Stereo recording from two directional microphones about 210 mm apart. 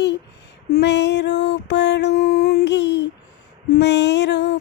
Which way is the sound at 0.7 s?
55° left (ahead or behind).